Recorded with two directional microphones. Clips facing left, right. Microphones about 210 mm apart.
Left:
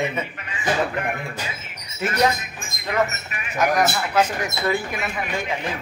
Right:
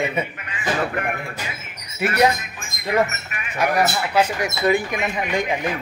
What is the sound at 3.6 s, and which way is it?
Speech, 10° right (ahead or behind).